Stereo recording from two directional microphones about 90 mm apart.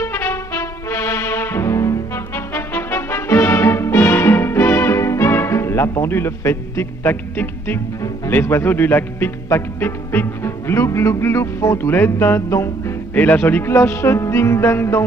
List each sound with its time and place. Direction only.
0.0 s brass instrument: 25° left (ahead or behind)
8.3 s speech: 25° left (ahead or behind)
13.1 s speech: 20° left (ahead or behind)